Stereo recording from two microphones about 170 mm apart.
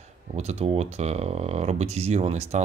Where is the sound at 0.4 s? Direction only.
40° right (ahead or behind).